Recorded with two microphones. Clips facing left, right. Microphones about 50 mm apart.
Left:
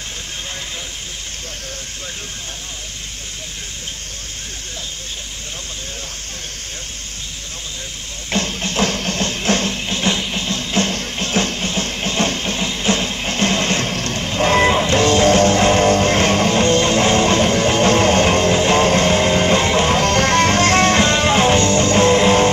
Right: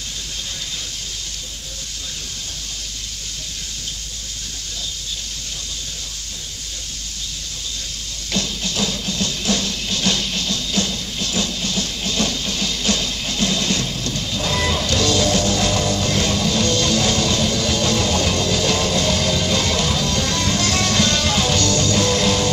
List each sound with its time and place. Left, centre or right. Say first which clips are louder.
8.3 s music: left 3 dB; left